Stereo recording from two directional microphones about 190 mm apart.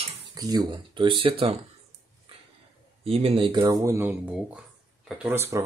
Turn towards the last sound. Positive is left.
turn(degrees=-15)  # may be behind; listen again after turning